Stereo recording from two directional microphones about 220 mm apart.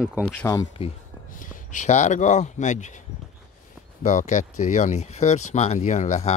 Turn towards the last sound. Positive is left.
turn(degrees=30)  # may be behind; listen again after turning